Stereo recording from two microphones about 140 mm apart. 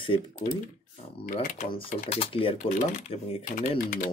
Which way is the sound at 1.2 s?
70° left (ahead or behind).